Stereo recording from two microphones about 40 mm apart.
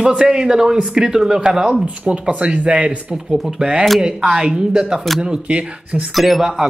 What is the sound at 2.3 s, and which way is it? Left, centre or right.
Speech, right.